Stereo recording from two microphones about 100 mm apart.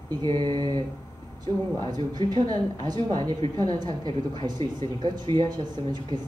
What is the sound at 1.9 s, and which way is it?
Speech, 45° right (ahead or behind).